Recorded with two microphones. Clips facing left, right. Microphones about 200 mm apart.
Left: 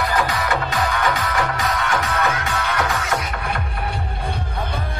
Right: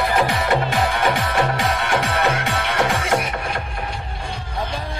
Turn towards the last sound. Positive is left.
turn(degrees=-30)  # may be behind; listen again after turning